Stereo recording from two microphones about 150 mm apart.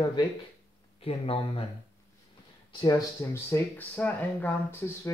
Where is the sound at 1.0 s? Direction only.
40° left (ahead or behind).